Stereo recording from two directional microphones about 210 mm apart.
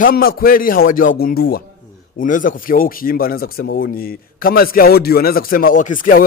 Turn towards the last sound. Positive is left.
turn(degrees=40)  # may be behind; listen again after turning